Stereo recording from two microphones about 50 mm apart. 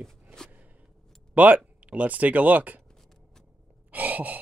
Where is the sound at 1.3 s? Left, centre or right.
Right.